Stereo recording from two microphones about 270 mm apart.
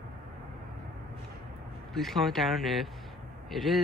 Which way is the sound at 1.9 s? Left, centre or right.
Centre.